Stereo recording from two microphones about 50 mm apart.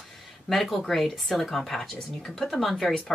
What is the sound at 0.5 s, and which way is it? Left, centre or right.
Speech, centre.